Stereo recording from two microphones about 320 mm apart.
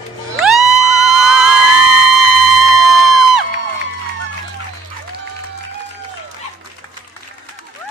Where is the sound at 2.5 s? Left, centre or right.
Centre.